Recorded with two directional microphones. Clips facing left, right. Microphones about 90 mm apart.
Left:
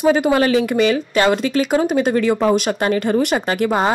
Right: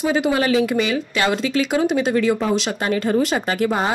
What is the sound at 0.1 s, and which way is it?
Speech, 45° left (ahead or behind).